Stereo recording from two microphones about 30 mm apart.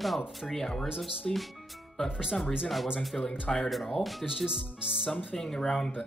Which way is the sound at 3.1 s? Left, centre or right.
Centre.